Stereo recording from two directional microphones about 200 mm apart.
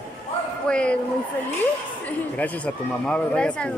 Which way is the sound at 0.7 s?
5° left (ahead or behind).